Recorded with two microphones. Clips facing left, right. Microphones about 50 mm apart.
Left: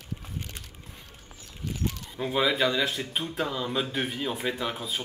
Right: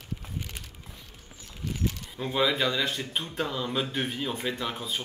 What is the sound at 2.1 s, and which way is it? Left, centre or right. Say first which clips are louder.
Speech: left 1 dB; centre.